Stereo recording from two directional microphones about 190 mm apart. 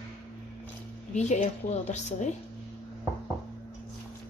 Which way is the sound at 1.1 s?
35° left (ahead or behind).